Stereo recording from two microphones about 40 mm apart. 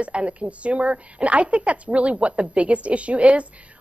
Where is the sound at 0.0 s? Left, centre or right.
Right.